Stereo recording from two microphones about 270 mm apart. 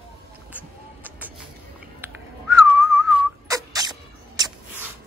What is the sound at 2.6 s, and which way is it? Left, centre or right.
Whistling, centre.